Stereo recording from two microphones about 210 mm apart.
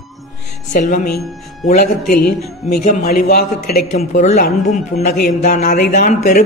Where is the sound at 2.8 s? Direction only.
45° left (ahead or behind).